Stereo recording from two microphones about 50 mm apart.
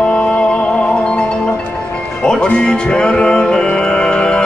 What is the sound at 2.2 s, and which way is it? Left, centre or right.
Music, centre.